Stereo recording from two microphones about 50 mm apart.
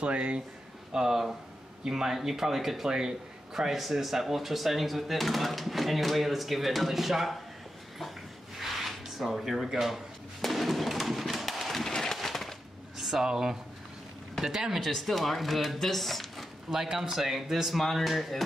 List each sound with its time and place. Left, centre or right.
0.0 s a man's voice: right
0.9 s a man's voice: centre
8.5 s a sound: centre
14.4 s speech: centre
14.8 s a man's voice: centre
16.7 s a man's voice: centre